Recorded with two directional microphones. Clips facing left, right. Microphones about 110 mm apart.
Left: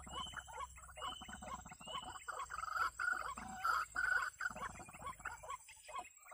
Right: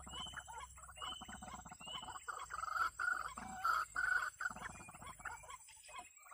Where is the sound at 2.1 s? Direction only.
15° right (ahead or behind).